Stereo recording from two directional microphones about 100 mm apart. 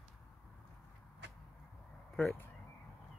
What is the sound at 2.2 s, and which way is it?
Speech, 10° left (ahead or behind).